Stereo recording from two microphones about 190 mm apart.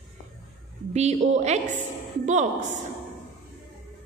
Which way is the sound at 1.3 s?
35° right (ahead or behind).